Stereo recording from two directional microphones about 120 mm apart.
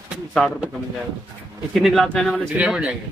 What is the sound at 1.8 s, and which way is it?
Speech, centre (ahead or behind).